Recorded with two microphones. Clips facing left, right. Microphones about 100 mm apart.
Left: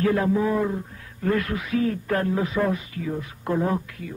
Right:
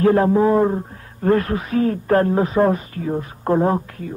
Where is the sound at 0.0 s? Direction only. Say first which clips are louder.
Right 7 dB; 40° right (ahead or behind).